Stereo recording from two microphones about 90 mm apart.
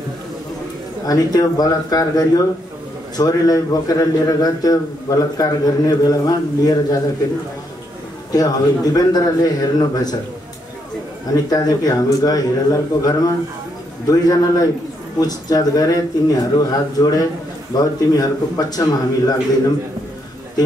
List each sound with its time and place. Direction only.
1.0 s a man's voice: 45° left (ahead or behind)
8.3 s a man's voice: 45° left (ahead or behind)
11.3 s a man's voice: 45° left (ahead or behind)